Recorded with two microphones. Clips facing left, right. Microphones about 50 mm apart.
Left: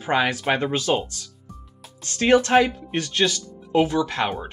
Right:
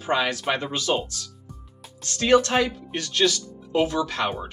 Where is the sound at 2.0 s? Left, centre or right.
Left.